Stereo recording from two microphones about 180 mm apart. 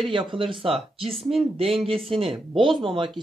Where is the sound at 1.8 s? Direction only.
30° right (ahead or behind).